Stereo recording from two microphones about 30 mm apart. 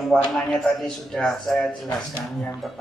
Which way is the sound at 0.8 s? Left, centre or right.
Left.